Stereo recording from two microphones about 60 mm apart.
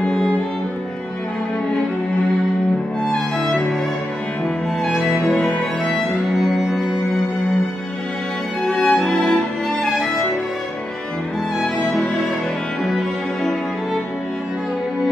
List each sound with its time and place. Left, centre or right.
0.0 s music: centre
3.1 s music: centre
4.8 s music: centre
5.2 s music: centre
6.4 s music: centre
8.6 s music: centre
8.9 s music: centre
12.8 s music: centre